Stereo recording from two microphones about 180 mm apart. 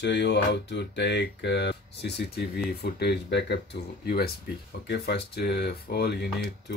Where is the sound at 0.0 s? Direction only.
75° left (ahead or behind).